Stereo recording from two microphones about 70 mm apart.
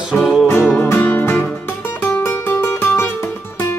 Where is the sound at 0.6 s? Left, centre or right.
Left.